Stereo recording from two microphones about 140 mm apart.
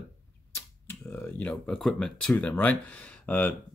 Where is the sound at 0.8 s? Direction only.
15° left (ahead or behind).